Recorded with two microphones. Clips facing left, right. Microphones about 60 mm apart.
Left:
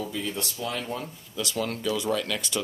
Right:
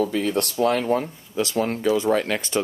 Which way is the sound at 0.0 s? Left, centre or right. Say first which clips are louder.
Right 9 dB; right.